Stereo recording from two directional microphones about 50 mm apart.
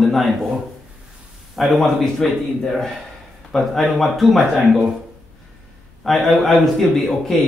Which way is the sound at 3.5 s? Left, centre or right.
Centre.